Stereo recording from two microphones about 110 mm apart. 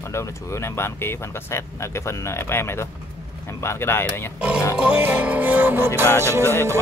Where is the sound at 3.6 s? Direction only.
25° left (ahead or behind).